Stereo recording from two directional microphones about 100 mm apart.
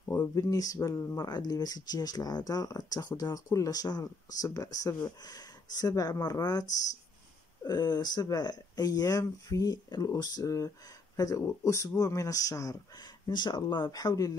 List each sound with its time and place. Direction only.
0.3 s speech: 35° left (ahead or behind)
7.6 s speech: 45° left (ahead or behind)
13.3 s speech: 45° left (ahead or behind)